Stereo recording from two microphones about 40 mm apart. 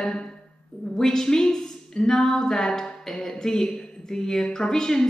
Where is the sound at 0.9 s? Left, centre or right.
Centre.